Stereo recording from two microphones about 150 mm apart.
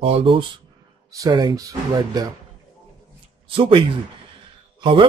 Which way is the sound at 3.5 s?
35° right (ahead or behind).